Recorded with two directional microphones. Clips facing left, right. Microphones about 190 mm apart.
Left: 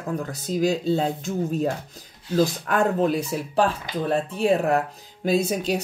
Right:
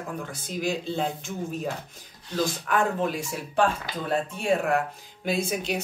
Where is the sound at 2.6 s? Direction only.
40° left (ahead or behind).